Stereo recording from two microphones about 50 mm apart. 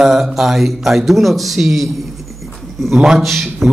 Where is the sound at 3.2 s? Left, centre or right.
Centre.